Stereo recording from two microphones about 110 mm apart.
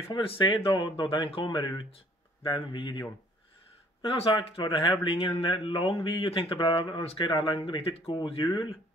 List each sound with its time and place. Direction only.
0.1 s speech: 50° left (ahead or behind)
1.0 s speech: 55° left (ahead or behind)